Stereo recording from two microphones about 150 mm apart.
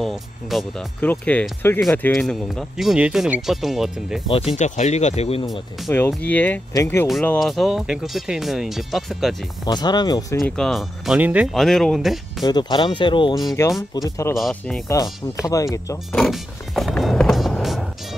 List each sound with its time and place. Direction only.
0.0 s speech: centre (ahead or behind)
4.3 s speech: 40° left (ahead or behind)
5.9 s speech: 15° left (ahead or behind)
7.3 s speech: centre (ahead or behind)
9.7 s speech: 30° left (ahead or behind)
10.4 s speech: 5° left (ahead or behind)
11.5 s speech: centre (ahead or behind)
12.4 s speech: 30° left (ahead or behind)
13.6 s speech: 15° left (ahead or behind)
16.1 s music: centre (ahead or behind)